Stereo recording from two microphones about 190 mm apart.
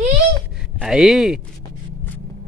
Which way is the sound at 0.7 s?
5° right (ahead or behind).